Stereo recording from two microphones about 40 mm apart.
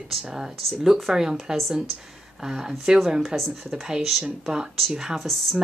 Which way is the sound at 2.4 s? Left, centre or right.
Centre.